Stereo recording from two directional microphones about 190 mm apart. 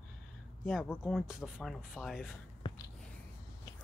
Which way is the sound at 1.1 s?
5° right (ahead or behind).